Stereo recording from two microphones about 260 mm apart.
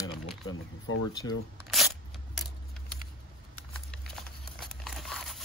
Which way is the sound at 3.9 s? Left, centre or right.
Centre.